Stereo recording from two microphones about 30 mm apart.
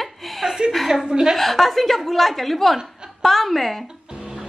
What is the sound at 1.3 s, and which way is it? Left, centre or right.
Speech, centre.